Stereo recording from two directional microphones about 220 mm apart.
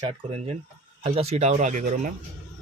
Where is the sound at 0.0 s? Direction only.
25° right (ahead or behind).